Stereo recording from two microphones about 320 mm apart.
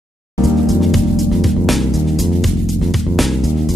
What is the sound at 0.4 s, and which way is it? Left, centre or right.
Music, centre.